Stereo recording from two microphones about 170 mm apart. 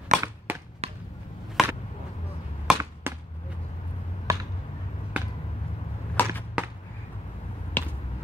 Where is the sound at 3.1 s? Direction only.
15° right (ahead or behind).